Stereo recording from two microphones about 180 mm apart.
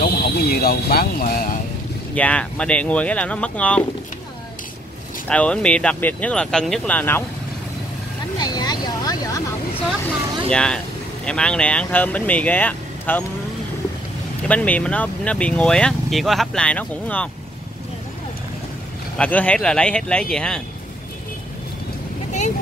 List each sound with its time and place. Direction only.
0.0 s speech: 60° left (ahead or behind)
2.1 s speech: 5° left (ahead or behind)
5.3 s speech: 5° left (ahead or behind)
8.4 s vehicle: 25° left (ahead or behind)
10.5 s speech: 5° left (ahead or behind)
14.5 s speech: 10° left (ahead or behind)
19.1 s speech: 5° left (ahead or behind)